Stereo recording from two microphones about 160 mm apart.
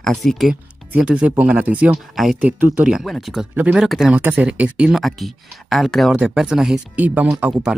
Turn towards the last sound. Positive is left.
turn(degrees=-5)  # may be behind; listen again after turning